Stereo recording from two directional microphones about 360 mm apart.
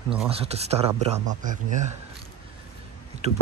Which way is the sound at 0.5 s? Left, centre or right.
Centre.